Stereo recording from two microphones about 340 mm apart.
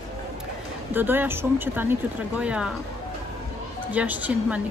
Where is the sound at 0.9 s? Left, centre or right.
Centre.